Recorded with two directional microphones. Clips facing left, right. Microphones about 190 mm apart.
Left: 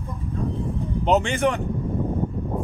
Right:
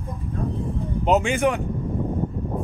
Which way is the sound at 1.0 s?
5° right (ahead or behind).